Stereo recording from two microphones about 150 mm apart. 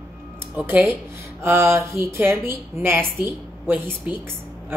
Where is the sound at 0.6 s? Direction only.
10° right (ahead or behind).